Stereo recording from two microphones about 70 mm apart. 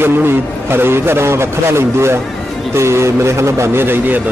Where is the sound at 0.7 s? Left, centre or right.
Right.